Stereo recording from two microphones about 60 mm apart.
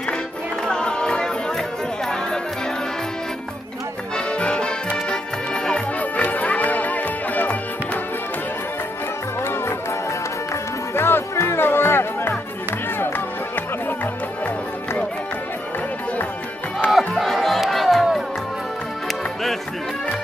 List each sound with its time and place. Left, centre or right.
0.7 s music: centre
4.3 s music: centre
5.9 s music: left
9.4 s music: left
11.0 s music: left
16.9 s crowd: centre